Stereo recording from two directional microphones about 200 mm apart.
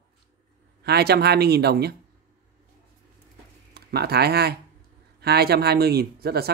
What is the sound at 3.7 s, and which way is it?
Speech, 50° right (ahead or behind).